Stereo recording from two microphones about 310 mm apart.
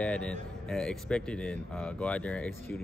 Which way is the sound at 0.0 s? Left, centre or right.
Centre.